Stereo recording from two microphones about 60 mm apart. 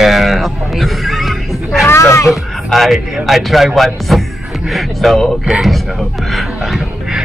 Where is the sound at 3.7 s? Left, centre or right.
Centre.